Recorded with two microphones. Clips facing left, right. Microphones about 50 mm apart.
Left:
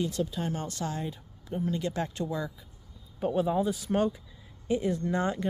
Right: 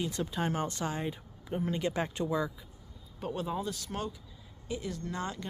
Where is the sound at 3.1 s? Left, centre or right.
Centre.